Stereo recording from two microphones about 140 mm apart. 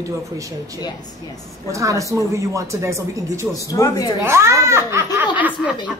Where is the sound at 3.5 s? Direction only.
25° left (ahead or behind).